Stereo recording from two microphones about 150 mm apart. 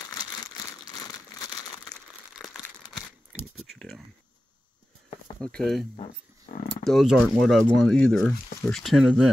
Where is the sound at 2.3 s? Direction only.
Centre (ahead or behind).